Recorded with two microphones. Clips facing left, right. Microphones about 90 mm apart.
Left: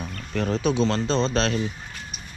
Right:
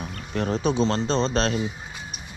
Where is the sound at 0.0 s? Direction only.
15° right (ahead or behind).